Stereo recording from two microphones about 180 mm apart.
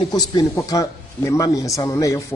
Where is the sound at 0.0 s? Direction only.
20° left (ahead or behind).